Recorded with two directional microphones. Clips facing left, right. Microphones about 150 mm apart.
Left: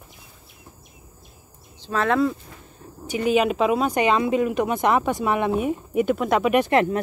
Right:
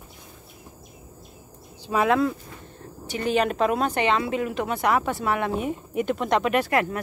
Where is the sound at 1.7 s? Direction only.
10° right (ahead or behind).